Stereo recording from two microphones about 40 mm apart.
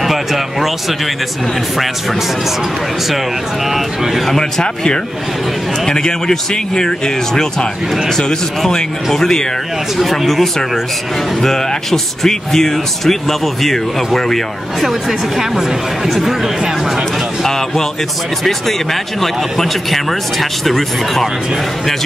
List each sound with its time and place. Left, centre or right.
0.0 s a sound: centre
3.7 s a woman's voice: centre
4.3 s speech: centre
8.2 s speech: centre
14.9 s a woman's voice: centre
17.4 s speech: centre
19.2 s speech: centre